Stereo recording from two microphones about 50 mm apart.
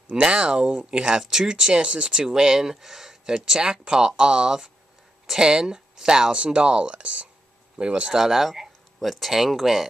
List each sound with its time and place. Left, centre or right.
0.1 s speech: centre